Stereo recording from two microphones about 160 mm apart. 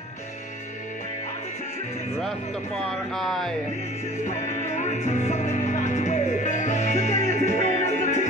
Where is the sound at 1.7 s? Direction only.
45° left (ahead or behind).